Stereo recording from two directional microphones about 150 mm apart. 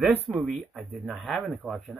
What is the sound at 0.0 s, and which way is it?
Speech, 10° right (ahead or behind).